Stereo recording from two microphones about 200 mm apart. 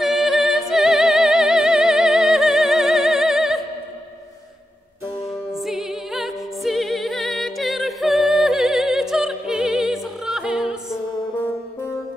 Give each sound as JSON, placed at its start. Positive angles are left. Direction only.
{"t": 0.0, "sound": "music", "side_deg": 0}
{"t": 5.5, "sound": "music", "side_deg": 0}